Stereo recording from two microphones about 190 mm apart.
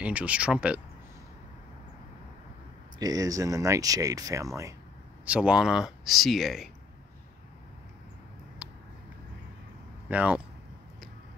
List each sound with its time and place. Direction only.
0.0 s speech: 5° right (ahead or behind)
3.0 s speech: 20° right (ahead or behind)
5.2 s speech: 5° right (ahead or behind)
10.0 s speech: 10° right (ahead or behind)